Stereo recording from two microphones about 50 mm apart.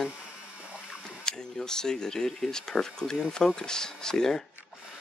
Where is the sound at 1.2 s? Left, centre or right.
Centre.